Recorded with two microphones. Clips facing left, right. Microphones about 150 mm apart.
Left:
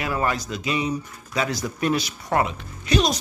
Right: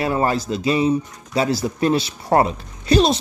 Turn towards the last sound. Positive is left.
turn(degrees=-30)  # may be behind; listen again after turning